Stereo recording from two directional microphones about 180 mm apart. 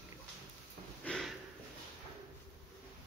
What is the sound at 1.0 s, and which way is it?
Sniff, 5° left (ahead or behind).